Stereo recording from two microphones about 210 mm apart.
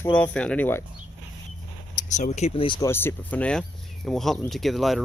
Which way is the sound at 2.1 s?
35° left (ahead or behind).